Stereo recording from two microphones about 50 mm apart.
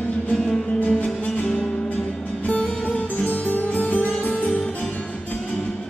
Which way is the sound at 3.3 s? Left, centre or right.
Left.